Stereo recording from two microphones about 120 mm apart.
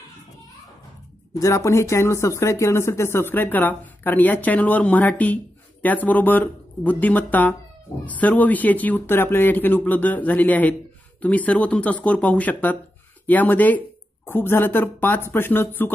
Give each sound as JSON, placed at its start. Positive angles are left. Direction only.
{"t": 1.4, "sound": "speech", "side_deg": 25}